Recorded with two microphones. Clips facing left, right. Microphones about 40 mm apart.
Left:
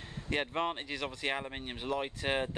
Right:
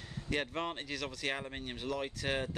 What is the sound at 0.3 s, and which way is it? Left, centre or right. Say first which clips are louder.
Speech: left 3 dB; left.